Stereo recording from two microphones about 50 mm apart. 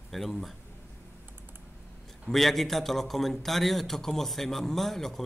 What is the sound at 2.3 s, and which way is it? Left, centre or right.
A man's voice, centre.